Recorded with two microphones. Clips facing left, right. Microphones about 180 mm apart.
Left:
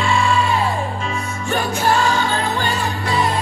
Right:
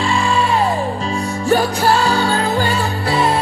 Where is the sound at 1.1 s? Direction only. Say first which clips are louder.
Right 7 dB; 35° right (ahead or behind).